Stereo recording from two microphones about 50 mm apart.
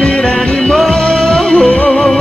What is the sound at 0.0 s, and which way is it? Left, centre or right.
Music, left.